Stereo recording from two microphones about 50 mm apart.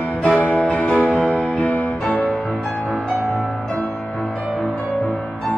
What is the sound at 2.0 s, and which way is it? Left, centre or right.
Music, centre.